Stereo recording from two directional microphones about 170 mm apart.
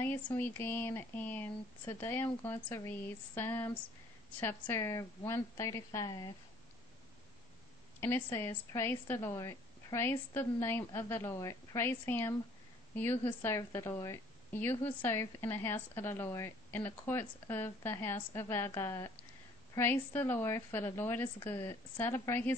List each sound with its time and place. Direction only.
0.0 s a woman's voice: 10° left (ahead or behind)
8.0 s a woman's voice: 15° left (ahead or behind)